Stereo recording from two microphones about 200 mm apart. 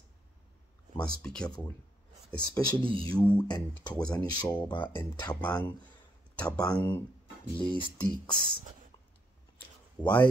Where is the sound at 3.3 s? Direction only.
20° left (ahead or behind).